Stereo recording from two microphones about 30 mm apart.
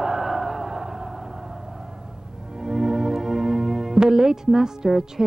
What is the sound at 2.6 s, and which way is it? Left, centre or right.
Music, right.